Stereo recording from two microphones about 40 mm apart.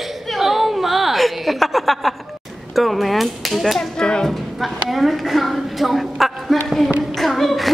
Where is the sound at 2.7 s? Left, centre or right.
Centre.